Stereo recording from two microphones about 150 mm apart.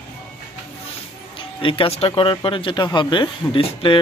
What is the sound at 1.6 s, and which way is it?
Speech, 35° left (ahead or behind).